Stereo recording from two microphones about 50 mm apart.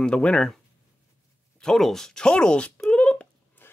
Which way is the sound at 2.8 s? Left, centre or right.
Left.